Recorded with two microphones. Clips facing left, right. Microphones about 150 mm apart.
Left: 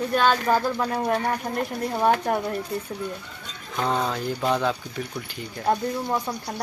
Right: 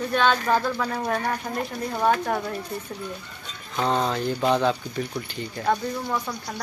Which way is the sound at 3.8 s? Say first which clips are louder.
Right 2 dB; 5° left (ahead or behind).